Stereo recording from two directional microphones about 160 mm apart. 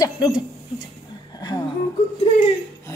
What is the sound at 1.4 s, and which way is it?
Music, 25° left (ahead or behind).